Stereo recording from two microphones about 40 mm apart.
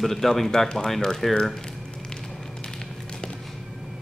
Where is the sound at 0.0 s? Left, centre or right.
Centre.